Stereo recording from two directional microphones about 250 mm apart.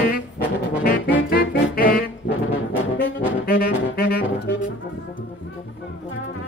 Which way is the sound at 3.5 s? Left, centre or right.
Left.